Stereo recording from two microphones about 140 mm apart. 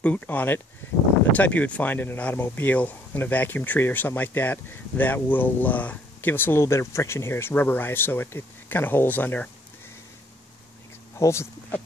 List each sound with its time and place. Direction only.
0.0 s speech: 10° left (ahead or behind)
11.1 s speech: 20° left (ahead or behind)